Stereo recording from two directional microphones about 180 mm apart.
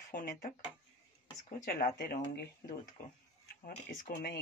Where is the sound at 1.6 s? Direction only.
55° left (ahead or behind).